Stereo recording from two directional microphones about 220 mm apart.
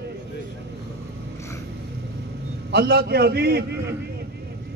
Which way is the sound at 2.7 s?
45° right (ahead or behind).